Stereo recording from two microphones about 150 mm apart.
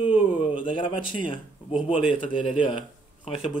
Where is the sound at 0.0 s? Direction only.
35° left (ahead or behind).